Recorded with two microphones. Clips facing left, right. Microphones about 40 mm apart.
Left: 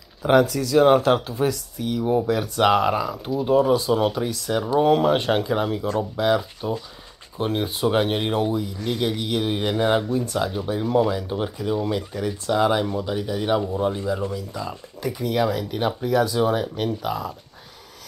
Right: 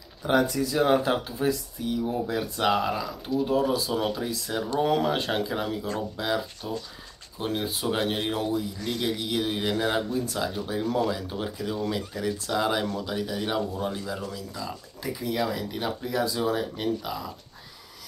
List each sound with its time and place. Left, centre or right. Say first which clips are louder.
0.2 s speech: left 6 dB; left
0.7 s speech: left 7 dB; left
2.7 s speech: left 6 dB; left
6.6 s speech: left 6 dB; left
10.2 s speech: left 5 dB; left
10.5 s speech: left 6 dB; left
15.0 s speech: left 6 dB; left